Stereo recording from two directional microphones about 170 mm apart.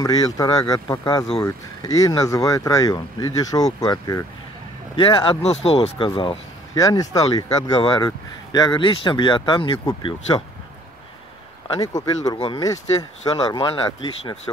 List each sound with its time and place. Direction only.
0.0 s speech: 20° left (ahead or behind)
4.9 s speech: 30° left (ahead or behind)
11.6 s speech: 20° left (ahead or behind)